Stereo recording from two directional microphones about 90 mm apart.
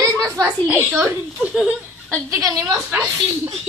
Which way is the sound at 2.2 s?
40° right (ahead or behind).